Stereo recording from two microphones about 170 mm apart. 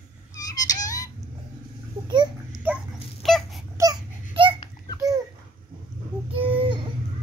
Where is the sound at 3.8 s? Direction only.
20° right (ahead or behind).